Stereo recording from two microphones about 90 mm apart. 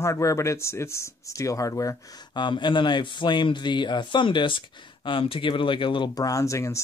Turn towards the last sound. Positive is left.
turn(degrees=35)  # may be behind; listen again after turning